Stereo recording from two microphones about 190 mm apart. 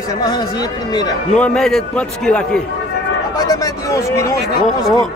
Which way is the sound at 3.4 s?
20° left (ahead or behind).